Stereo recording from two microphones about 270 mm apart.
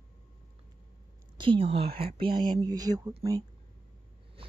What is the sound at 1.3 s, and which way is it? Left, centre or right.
Speech, centre.